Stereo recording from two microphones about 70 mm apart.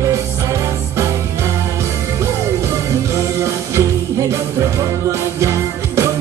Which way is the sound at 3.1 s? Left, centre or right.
Right.